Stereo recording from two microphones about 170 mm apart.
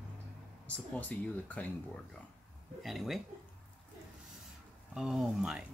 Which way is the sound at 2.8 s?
Centre (ahead or behind).